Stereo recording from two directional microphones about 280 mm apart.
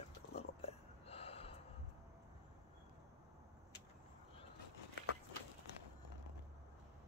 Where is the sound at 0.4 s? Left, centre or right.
Left.